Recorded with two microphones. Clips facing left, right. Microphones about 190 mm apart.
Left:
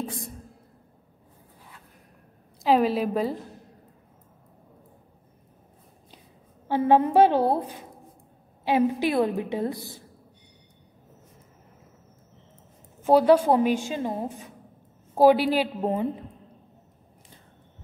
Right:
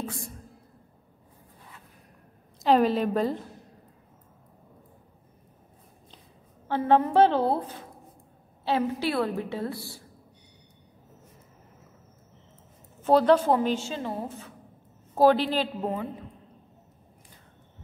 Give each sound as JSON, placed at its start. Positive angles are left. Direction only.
{"t": 2.6, "sound": "a woman's voice", "side_deg": 5}
{"t": 6.7, "sound": "a woman's voice", "side_deg": 15}
{"t": 13.0, "sound": "a woman's voice", "side_deg": 10}
{"t": 15.8, "sound": "a woman's voice", "side_deg": 25}